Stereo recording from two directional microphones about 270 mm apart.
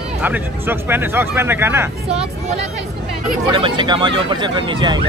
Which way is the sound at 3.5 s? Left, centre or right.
Centre.